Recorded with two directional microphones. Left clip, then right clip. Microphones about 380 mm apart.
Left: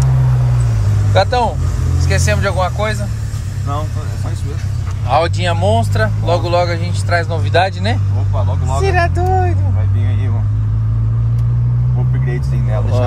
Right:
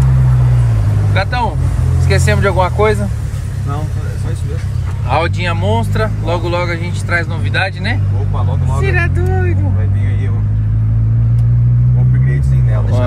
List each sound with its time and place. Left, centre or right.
1.1 s speech: centre
5.1 s speech: centre